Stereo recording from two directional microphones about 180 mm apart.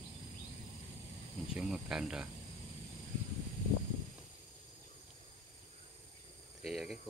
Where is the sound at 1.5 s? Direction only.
5° right (ahead or behind).